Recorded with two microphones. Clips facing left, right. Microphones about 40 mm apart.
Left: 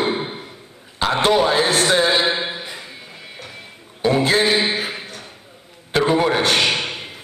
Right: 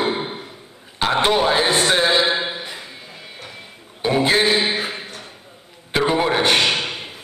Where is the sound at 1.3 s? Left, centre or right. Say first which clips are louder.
Left 1 dB; centre.